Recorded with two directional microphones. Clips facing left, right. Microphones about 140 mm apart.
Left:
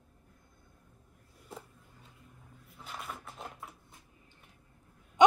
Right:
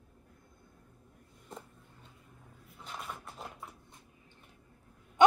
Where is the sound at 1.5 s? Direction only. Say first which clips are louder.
Even; 5° left (ahead or behind).